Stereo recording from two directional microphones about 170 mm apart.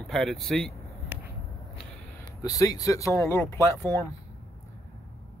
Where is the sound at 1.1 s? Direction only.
10° right (ahead or behind).